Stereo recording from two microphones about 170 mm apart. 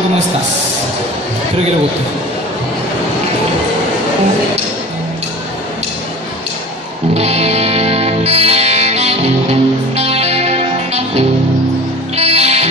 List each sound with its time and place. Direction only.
7.2 s music: 40° right (ahead or behind)